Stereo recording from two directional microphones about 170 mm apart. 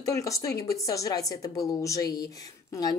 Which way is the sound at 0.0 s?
20° left (ahead or behind).